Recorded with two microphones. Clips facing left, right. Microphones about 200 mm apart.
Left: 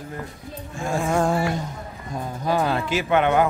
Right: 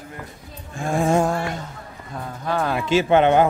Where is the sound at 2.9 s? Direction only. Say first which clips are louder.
Right 6 dB; 30° right (ahead or behind).